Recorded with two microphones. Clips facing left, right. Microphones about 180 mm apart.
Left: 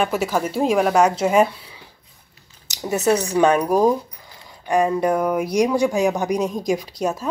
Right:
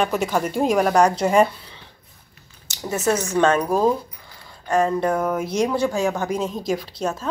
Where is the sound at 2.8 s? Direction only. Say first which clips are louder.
Left 3 dB; 15° left (ahead or behind).